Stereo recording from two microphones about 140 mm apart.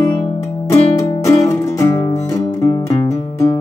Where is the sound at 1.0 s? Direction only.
25° left (ahead or behind).